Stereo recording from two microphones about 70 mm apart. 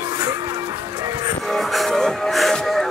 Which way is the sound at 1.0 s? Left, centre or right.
Right.